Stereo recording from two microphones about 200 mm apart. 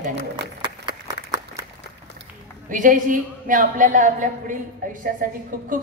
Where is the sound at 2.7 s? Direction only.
40° right (ahead or behind).